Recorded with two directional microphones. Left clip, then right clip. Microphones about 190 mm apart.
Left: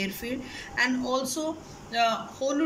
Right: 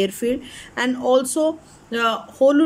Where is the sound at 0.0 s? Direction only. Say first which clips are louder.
Right 11 dB; 40° right (ahead or behind).